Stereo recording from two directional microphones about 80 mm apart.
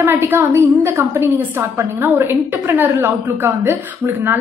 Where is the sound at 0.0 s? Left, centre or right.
Right.